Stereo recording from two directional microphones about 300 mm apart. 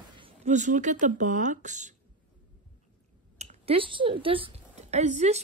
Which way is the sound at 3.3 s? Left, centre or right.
Right.